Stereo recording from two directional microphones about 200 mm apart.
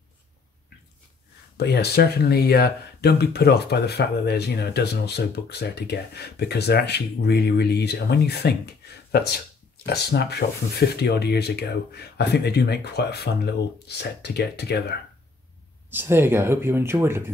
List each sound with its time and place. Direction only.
1.6 s speech: 55° left (ahead or behind)
15.9 s speech: 10° right (ahead or behind)